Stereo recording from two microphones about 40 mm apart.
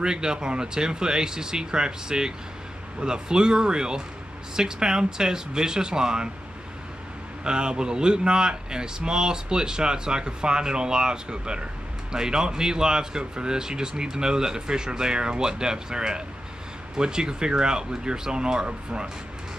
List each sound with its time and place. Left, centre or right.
0.0 s speech: centre
7.4 s speech: right